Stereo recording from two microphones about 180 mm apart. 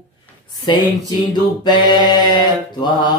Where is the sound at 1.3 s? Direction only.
25° left (ahead or behind).